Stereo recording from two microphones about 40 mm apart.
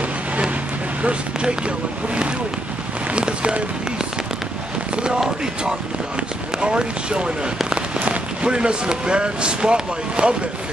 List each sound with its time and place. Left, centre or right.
1.0 s speech: right
3.1 s boat: right
4.9 s a sound: right
6.6 s speech: right